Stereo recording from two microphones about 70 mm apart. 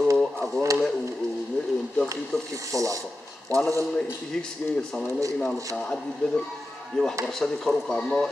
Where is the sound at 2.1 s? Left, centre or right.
Right.